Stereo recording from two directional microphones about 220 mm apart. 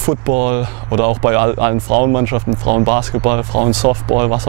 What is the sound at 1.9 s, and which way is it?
Speech, 45° right (ahead or behind).